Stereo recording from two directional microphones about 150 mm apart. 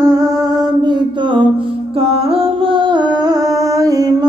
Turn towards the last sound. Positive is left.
turn(degrees=-25)  # may be behind; listen again after turning